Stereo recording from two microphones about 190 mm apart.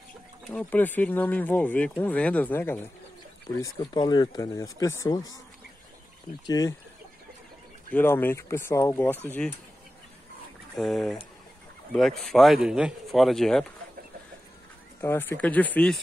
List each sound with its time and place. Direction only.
0.5 s speech: 10° left (ahead or behind)
6.4 s speech: 20° left (ahead or behind)
7.9 s speech: 10° left (ahead or behind)
10.8 s speech: centre (ahead or behind)
15.0 s speech: 10° left (ahead or behind)